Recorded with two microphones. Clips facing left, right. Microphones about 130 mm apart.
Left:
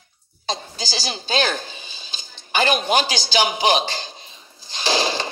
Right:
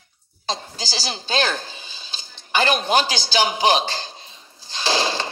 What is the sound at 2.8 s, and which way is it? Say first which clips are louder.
A man's voice: even; 15° left (ahead or behind).